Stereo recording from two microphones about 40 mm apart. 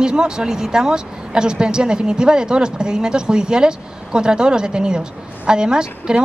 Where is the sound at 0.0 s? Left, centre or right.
Centre.